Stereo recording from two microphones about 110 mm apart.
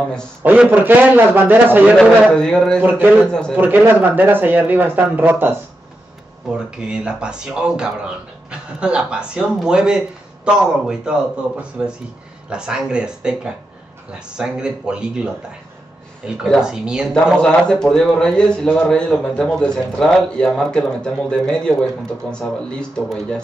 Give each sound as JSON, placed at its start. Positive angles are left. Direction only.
{"t": 0.4, "sound": "speech", "side_deg": -15}
{"t": 2.0, "sound": "a man's voice", "side_deg": 5}
{"t": 3.5, "sound": "speech", "side_deg": -15}
{"t": 12.4, "sound": "speech", "side_deg": -5}
{"t": 16.5, "sound": "speech", "side_deg": -5}
{"t": 17.4, "sound": "a man's voice", "side_deg": 10}